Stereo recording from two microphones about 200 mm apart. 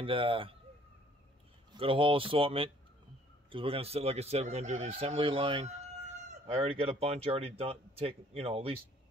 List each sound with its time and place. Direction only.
0.0 s speech: 25° right (ahead or behind)
1.7 s speech: 25° right (ahead or behind)